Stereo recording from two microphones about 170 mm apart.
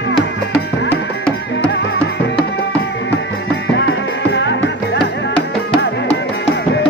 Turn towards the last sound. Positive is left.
turn(degrees=85)